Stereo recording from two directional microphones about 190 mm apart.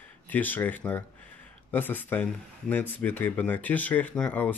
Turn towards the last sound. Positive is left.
turn(degrees=5)  # may be behind; listen again after turning